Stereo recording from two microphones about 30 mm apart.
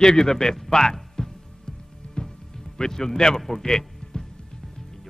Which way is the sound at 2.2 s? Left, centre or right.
Left.